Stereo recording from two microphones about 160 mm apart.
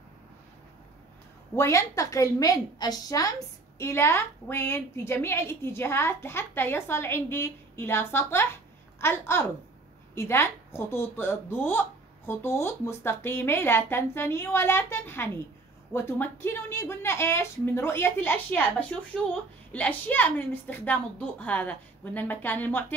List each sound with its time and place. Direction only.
1.6 s a woman's voice: 20° left (ahead or behind)